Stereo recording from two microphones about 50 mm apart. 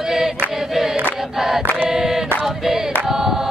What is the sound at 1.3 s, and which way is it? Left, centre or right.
Choir, centre.